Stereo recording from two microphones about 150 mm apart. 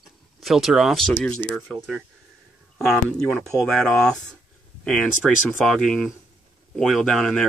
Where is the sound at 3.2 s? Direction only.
5° left (ahead or behind).